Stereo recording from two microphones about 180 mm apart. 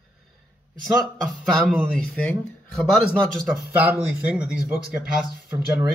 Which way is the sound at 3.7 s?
10° right (ahead or behind).